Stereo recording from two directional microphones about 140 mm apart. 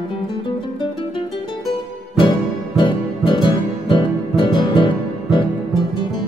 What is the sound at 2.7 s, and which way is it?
Music, 35° left (ahead or behind).